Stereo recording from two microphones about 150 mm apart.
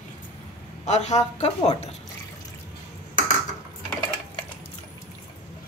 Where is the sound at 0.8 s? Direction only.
50° left (ahead or behind).